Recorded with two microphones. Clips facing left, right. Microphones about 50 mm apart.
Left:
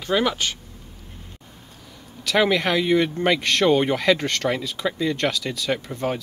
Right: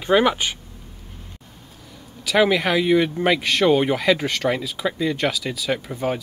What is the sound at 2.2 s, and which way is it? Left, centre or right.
Speech, centre.